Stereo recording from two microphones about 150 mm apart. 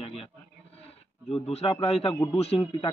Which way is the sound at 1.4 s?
40° left (ahead or behind).